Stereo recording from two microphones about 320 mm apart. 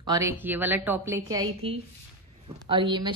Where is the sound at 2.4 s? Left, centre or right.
Centre.